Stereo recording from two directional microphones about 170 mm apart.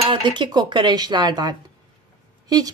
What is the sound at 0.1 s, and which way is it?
Speech, 25° right (ahead or behind).